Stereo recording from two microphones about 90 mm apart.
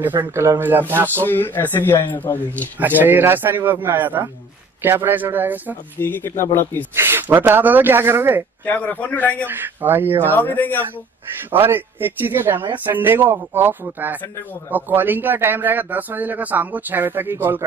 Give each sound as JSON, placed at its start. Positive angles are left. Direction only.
{"t": 0.0, "sound": "a man's voice", "side_deg": -25}
{"t": 1.2, "sound": "speech", "side_deg": 20}
{"t": 2.8, "sound": "a man's voice", "side_deg": -20}
{"t": 5.9, "sound": "speech", "side_deg": 25}
{"t": 7.0, "sound": "a man's voice", "side_deg": -25}
{"t": 8.6, "sound": "a man's voice", "side_deg": 15}
{"t": 9.5, "sound": "a man's voice", "side_deg": -20}
{"t": 10.3, "sound": "speech", "side_deg": 20}
{"t": 11.5, "sound": "a man's voice", "side_deg": -25}